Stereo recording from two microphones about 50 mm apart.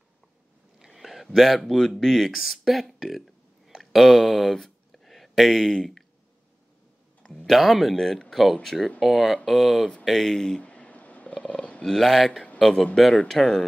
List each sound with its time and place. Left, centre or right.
0.7 s speech: centre
7.4 s speech: centre
10.0 s speech: centre
10.6 s a sound: left
11.8 s speech: centre